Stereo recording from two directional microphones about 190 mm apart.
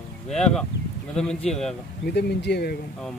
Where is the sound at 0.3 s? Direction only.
5° left (ahead or behind).